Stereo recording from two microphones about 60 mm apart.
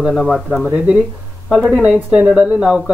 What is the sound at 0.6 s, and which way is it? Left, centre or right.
Speech, centre.